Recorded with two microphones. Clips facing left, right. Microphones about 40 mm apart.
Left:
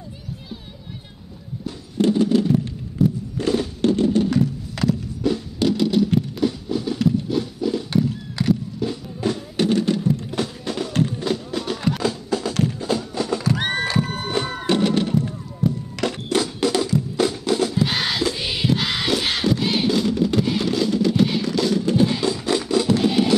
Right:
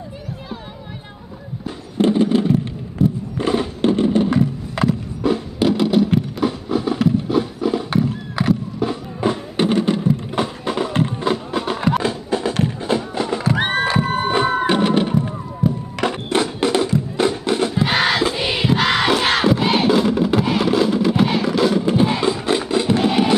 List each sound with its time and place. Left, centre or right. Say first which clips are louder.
2.0 s a sound: right 2 dB; right
3.0 s music: right 2 dB; right
15.6 s music: right 2 dB; centre
16.0 s music: right 3 dB; right
17.8 s crowd: right 5 dB; centre